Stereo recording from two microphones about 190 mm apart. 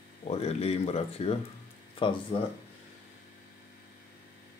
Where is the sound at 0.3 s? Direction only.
35° left (ahead or behind).